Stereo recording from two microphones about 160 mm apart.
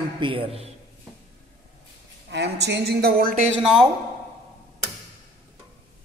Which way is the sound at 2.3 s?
90° right.